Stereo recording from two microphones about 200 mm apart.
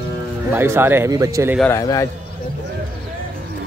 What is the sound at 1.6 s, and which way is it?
Speech, 15° left (ahead or behind).